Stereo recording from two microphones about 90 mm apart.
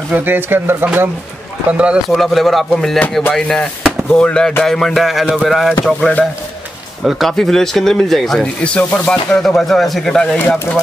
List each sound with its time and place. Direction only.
0.1 s speech: 20° right (ahead or behind)
1.7 s speech: 10° right (ahead or behind)
2.0 s speech: centre (ahead or behind)
5.9 s speech: 10° left (ahead or behind)
8.6 s speech: 10° left (ahead or behind)